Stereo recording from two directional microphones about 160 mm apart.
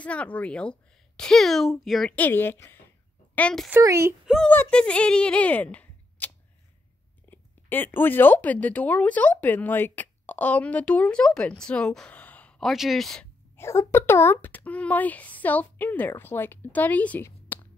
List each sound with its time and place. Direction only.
0.0 s a woman's voice: 10° left (ahead or behind)
3.7 s speech: 15° right (ahead or behind)
4.3 s speech: 5° left (ahead or behind)
13.6 s speech: 15° left (ahead or behind)